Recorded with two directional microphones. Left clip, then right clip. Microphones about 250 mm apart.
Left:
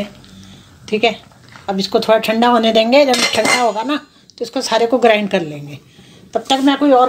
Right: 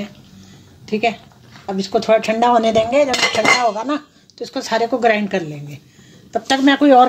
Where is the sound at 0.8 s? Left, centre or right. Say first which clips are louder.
Left 3 dB; centre.